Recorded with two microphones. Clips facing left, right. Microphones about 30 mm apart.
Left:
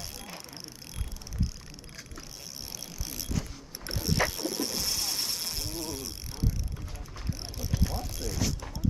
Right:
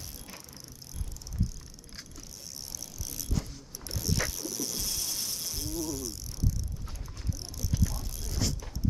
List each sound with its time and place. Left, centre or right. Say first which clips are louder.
3.0 s ratchet: left 1 dB; left
3.8 s mechanisms: left 4 dB; left
7.2 s vehicle: left 1 dB; left
8.0 s vehicle: left 2 dB; left